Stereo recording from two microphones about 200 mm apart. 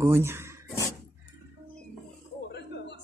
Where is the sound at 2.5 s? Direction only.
60° left (ahead or behind).